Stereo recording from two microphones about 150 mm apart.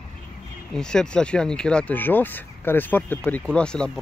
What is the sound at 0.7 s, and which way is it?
Speech, 5° left (ahead or behind).